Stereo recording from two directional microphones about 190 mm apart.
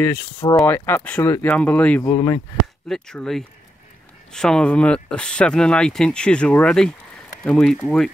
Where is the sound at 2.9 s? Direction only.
Centre (ahead or behind).